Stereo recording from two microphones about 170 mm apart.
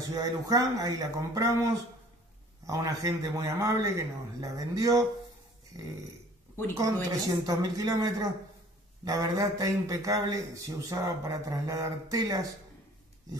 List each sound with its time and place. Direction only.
0.0 s a man's voice: 20° right (ahead or behind)
6.8 s a man's voice: 20° right (ahead or behind)